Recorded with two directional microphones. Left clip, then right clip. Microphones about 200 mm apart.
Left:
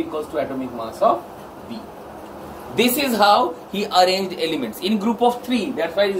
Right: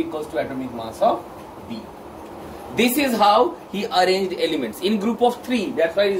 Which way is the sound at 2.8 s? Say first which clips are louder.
Left 1 dB; 20° left (ahead or behind).